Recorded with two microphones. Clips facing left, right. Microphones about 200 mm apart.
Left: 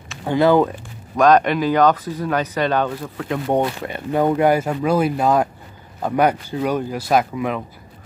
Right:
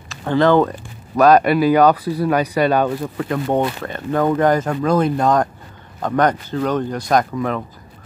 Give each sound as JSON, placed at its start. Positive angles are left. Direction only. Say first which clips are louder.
{"t": 0.2, "sound": "speech", "louder": "right 1 dB", "side_deg": 10}
{"t": 1.2, "sound": "speech", "louder": "right 2 dB", "side_deg": -10}
{"t": 3.4, "sound": "speech", "louder": "left 1 dB", "side_deg": 15}